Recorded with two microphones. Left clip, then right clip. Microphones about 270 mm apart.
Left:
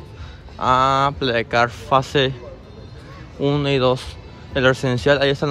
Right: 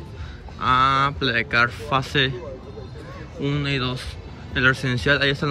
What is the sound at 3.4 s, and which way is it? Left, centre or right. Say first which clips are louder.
Speech: left 8 dB; centre.